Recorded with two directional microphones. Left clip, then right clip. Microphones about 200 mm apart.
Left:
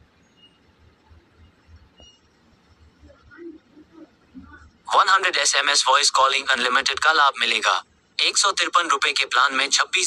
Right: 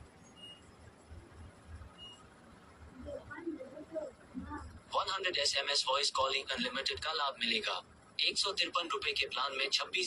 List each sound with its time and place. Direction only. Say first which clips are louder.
4.8 s a man's voice: left 18 dB; 45° left (ahead or behind)